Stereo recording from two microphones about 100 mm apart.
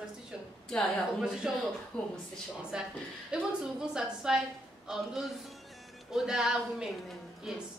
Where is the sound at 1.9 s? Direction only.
5° left (ahead or behind).